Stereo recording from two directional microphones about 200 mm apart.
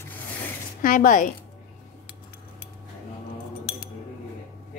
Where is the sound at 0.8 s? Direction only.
40° left (ahead or behind).